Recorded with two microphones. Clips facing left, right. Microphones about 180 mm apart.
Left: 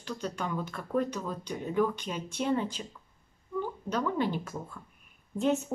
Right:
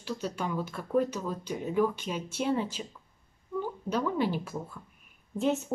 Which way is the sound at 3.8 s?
10° right (ahead or behind).